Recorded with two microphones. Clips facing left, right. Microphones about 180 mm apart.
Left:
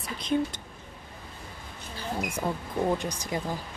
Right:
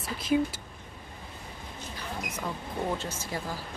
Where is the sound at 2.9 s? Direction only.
15° left (ahead or behind).